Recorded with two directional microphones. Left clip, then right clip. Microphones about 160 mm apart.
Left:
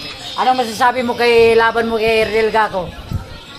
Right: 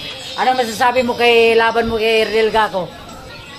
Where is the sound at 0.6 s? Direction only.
15° left (ahead or behind).